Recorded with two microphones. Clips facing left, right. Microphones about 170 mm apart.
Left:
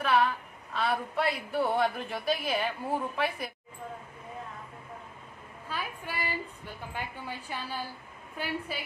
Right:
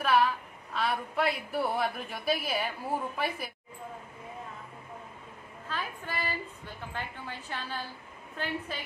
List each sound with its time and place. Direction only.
0.0 s a sound: centre (ahead or behind)
0.7 s a woman's voice: centre (ahead or behind)
5.7 s a woman's voice: 10° left (ahead or behind)